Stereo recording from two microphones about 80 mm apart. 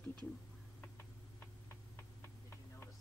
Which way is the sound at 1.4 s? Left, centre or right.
Left.